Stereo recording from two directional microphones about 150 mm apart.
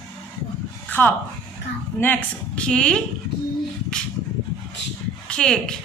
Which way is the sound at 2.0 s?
10° left (ahead or behind).